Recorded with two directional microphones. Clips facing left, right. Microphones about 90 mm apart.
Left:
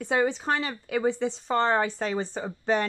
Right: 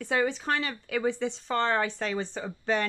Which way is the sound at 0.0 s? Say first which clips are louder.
Left 2 dB; 30° left (ahead or behind).